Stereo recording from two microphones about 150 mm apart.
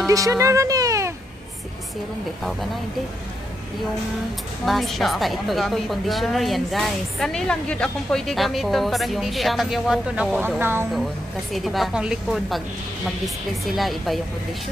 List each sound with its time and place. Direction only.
0.0 s speech: 20° right (ahead or behind)
4.6 s a woman's voice: centre (ahead or behind); by 10.9 s 15° right (ahead or behind)
11.5 s a woman's voice: centre (ahead or behind)
13.7 s a woman's voice: centre (ahead or behind)